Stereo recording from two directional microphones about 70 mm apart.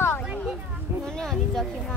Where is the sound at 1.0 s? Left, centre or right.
Centre.